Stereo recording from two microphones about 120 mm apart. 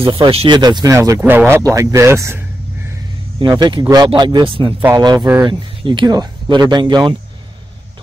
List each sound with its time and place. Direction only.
0.0 s speech: 45° right (ahead or behind)
0.6 s speech: 35° right (ahead or behind)
0.9 s speech: 25° right (ahead or behind)
3.3 s speech: 35° right (ahead or behind)
4.9 s speech: 35° right (ahead or behind)